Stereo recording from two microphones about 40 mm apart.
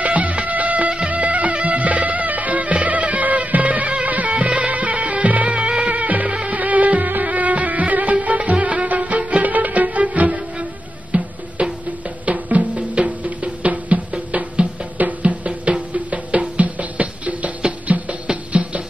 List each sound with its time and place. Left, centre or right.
0.0 s music: right
0.8 s music: right
1.1 s music: right
5.6 s music: right